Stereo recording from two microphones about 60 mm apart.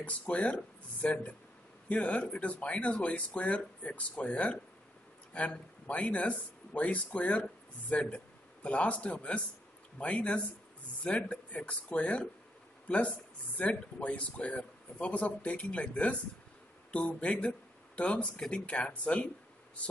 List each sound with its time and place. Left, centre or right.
0.0 s speech: left